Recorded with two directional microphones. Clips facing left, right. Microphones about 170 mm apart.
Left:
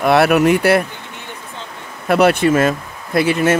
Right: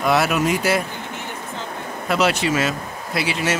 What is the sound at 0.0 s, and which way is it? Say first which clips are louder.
Speech: left 6 dB; 60° left (ahead or behind).